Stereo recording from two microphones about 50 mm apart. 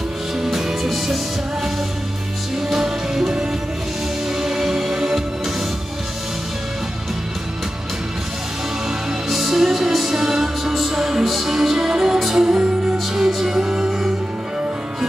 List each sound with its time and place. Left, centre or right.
0.4 s music: centre
2.7 s music: centre
9.3 s music: centre
12.4 s music: centre